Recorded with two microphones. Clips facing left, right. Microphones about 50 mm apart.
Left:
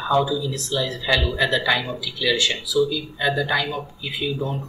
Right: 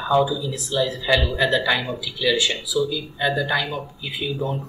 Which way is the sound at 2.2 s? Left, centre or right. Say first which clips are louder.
Right 1 dB; centre.